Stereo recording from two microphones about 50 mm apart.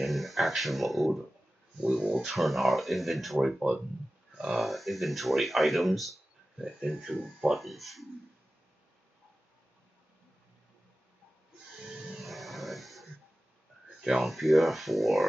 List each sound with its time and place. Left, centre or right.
0.0 s speech: centre
1.9 s speech: centre
6.6 s speech: centre
12.2 s a sound: centre
14.0 s speech: centre